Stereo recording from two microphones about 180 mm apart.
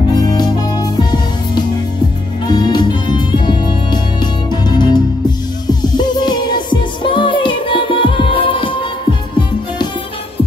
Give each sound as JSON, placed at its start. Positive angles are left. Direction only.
{"t": 0.2, "sound": "music", "side_deg": 20}